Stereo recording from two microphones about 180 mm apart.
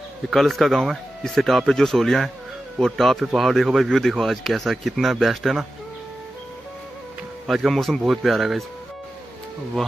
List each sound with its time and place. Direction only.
0.3 s speech: centre (ahead or behind)
7.4 s speech: centre (ahead or behind)
9.8 s speech: centre (ahead or behind)